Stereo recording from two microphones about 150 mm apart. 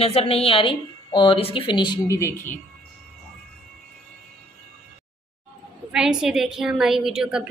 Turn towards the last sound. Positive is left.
turn(degrees=-5)  # may be behind; listen again after turning